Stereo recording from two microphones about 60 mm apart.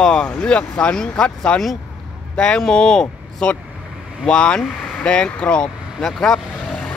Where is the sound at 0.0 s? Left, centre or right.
Centre.